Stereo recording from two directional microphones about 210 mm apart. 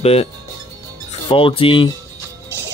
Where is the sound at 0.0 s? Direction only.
30° left (ahead or behind).